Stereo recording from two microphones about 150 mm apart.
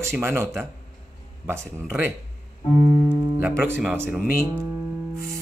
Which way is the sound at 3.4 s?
15° right (ahead or behind).